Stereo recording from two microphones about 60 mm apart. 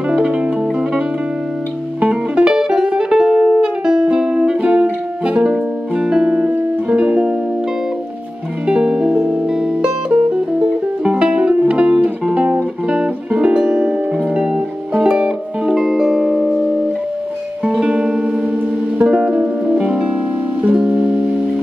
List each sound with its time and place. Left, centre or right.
0.1 s music: centre
2.0 s music: centre
8.6 s music: centre
17.6 s music: centre